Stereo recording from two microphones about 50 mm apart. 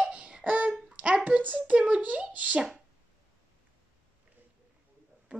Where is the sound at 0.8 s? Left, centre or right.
Right.